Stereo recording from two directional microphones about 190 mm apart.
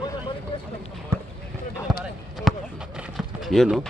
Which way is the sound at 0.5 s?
25° left (ahead or behind).